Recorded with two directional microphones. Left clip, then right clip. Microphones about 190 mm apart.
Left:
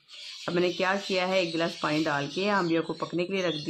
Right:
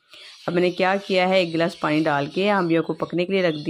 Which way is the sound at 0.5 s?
30° right (ahead or behind).